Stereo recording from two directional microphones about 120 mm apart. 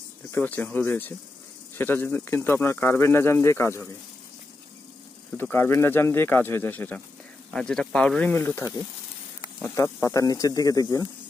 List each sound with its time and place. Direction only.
0.3 s speech: 15° left (ahead or behind)
5.4 s speech: 20° left (ahead or behind)